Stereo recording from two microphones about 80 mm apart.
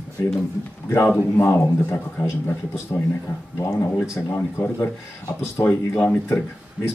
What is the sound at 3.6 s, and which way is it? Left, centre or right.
Speech, left.